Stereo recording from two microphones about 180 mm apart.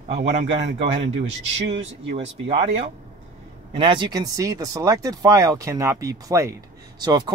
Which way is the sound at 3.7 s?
25° right (ahead or behind).